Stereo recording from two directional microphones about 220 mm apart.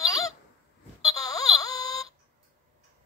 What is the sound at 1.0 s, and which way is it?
Wail, 15° left (ahead or behind).